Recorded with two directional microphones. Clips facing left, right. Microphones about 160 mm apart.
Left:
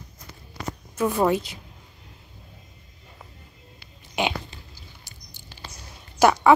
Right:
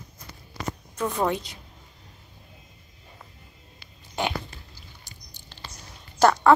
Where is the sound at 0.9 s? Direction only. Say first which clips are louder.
Left 5 dB; 5° left (ahead or behind).